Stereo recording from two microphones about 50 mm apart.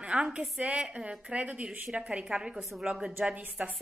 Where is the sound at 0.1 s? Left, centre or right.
Right.